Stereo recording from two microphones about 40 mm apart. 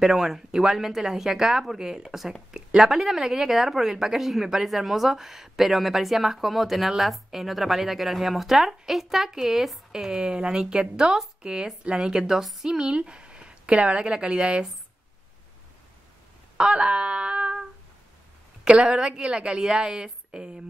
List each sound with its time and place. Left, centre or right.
0.0 s a woman's voice: centre
12.6 s a woman's voice: centre
16.5 s a sound: right
18.7 s a woman's voice: right